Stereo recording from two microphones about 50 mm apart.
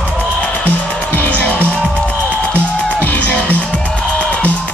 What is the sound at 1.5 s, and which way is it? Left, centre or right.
Music, right.